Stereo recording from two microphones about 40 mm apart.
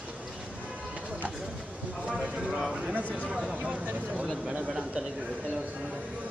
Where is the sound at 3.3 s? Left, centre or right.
Right.